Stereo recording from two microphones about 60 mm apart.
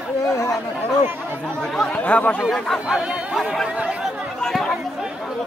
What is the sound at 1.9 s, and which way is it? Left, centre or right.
Speech, left.